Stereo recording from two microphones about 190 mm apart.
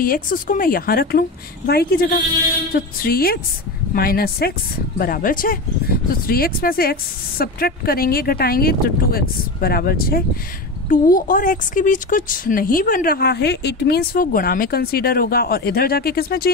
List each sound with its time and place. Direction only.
0.0 s a woman's voice: 45° left (ahead or behind)